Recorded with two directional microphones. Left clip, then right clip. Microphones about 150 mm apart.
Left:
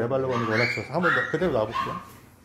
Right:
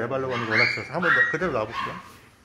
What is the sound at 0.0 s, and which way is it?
Speech, 15° left (ahead or behind).